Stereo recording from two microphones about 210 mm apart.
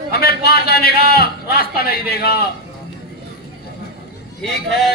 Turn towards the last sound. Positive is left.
turn(degrees=0)  # may be behind; listen again after turning